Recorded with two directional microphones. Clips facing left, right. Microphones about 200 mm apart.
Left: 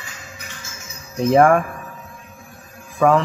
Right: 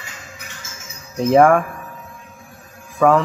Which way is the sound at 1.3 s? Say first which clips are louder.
Right 1 dB; centre (ahead or behind).